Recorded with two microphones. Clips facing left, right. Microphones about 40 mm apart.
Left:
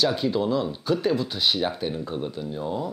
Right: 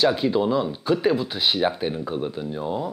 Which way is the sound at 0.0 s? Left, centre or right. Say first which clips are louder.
Right 3 dB; centre.